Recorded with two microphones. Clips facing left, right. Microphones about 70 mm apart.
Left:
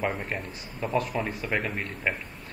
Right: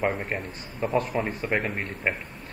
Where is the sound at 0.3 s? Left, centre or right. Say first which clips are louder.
Right 2 dB; centre.